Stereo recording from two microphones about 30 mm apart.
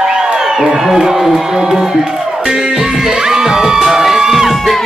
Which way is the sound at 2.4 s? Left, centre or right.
Centre.